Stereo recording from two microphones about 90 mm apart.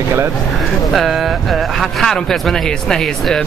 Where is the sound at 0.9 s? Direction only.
Centre (ahead or behind).